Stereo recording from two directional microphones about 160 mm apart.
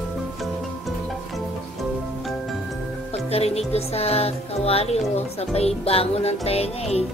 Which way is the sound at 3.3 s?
40° left (ahead or behind).